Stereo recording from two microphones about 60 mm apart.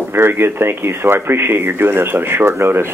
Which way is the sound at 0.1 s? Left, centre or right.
Right.